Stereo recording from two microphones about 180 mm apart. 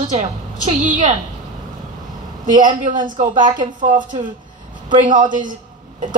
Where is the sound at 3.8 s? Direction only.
45° right (ahead or behind).